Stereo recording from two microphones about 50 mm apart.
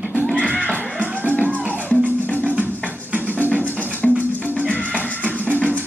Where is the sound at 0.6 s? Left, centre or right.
Left.